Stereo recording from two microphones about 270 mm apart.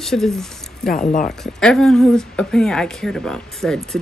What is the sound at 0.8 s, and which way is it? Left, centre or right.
Speech, left.